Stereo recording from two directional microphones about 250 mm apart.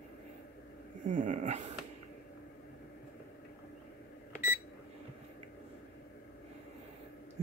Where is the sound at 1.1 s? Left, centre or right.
Right.